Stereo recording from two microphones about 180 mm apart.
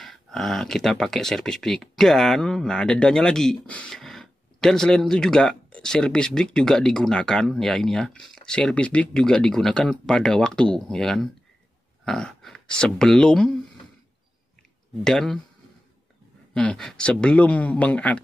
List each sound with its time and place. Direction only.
0.0 s speech: centre (ahead or behind)
15.0 s speech: 5° left (ahead or behind)
16.5 s speech: 5° left (ahead or behind)